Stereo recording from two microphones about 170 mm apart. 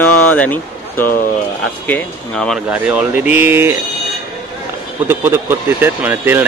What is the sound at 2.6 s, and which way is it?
Speech, 10° right (ahead or behind).